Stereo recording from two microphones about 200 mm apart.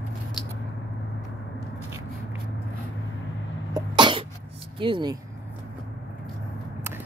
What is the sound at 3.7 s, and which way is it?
Sneeze, 25° right (ahead or behind).